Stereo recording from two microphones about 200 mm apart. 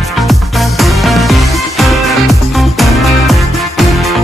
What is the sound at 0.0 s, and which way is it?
Music, centre (ahead or behind).